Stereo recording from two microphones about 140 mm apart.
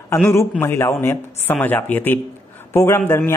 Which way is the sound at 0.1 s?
20° left (ahead or behind).